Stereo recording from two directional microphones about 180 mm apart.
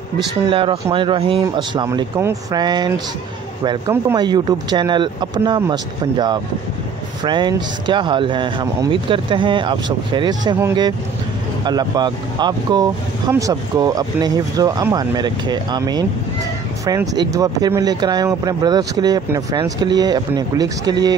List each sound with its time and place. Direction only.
0.5 s speech: 30° right (ahead or behind)